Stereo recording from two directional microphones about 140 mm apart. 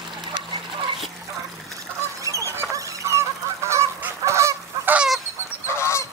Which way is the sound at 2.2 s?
25° right (ahead or behind).